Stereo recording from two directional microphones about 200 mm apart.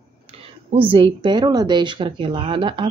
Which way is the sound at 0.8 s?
25° right (ahead or behind).